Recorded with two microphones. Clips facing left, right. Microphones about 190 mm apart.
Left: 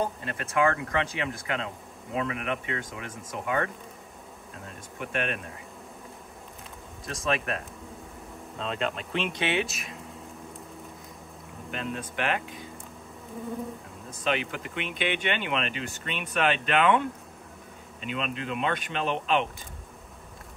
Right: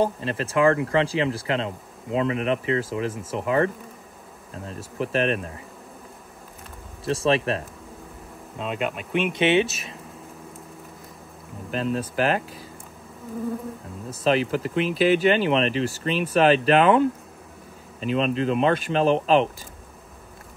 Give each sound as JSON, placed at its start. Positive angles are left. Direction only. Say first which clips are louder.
{"t": 0.0, "sound": "speech", "louder": "right 7 dB", "side_deg": -30}
{"t": 4.9, "sound": "speech", "louder": "right 8 dB", "side_deg": -30}
{"t": 7.1, "sound": "speech", "louder": "right 8 dB", "side_deg": -30}
{"t": 8.5, "sound": "speech", "louder": "right 3 dB", "side_deg": -10}
{"t": 9.3, "sound": "speech", "louder": "right 12 dB", "side_deg": -25}
{"t": 11.7, "sound": "speech", "louder": "right 8 dB", "side_deg": -35}
{"t": 14.2, "sound": "speech", "louder": "right 8 dB", "side_deg": -35}